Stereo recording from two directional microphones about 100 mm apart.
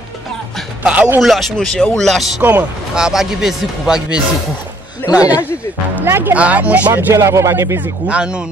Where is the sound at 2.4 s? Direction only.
15° right (ahead or behind).